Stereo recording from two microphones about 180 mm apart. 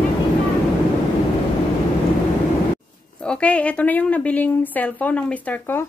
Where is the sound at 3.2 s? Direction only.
5° left (ahead or behind).